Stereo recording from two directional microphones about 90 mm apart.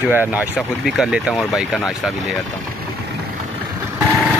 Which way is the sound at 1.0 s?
5° right (ahead or behind).